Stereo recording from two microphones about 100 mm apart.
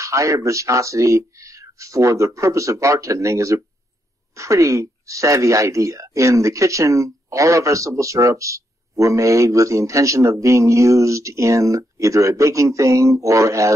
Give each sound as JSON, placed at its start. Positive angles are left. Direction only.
{"t": 0.0, "sound": "speech", "side_deg": -30}